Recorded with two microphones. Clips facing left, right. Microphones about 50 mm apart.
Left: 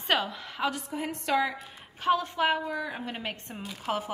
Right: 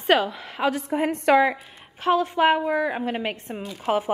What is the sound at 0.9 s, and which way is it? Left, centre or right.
Speech, right.